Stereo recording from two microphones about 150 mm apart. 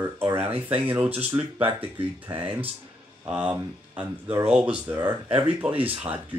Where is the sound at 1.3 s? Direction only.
25° right (ahead or behind).